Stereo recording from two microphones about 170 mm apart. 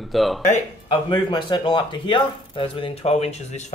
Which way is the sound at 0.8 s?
25° left (ahead or behind).